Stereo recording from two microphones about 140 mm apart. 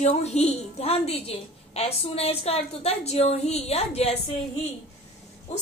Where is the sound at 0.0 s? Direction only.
50° left (ahead or behind).